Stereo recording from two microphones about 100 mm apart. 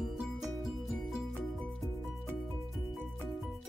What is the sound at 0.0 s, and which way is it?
Music, 5° right (ahead or behind).